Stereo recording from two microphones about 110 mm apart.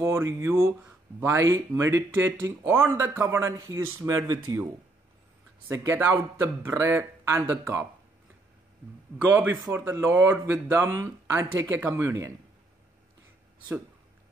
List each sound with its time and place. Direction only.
0.0 s speech: 25° right (ahead or behind)
5.7 s speech: 20° right (ahead or behind)
9.8 s speech: 20° right (ahead or behind)